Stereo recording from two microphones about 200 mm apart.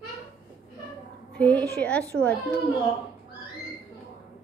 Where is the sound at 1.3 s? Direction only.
5° left (ahead or behind).